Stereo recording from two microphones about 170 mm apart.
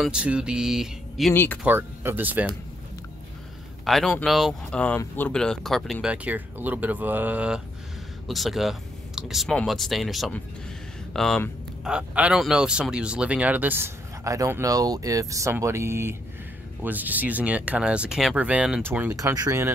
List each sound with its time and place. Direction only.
0.0 s speech: 5° right (ahead or behind)
1.3 s speech: 15° left (ahead or behind)
1.6 s speech: 10° right (ahead or behind)
3.8 s speech: centre (ahead or behind)
11.9 s speech: 5° right (ahead or behind)